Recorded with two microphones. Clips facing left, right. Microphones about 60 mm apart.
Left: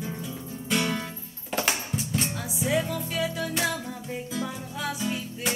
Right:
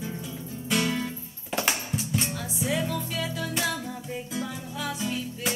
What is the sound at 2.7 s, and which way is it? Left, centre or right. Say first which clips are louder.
Music: left 2 dB; centre.